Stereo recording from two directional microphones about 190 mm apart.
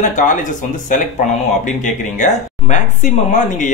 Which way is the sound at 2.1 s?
40° left (ahead or behind).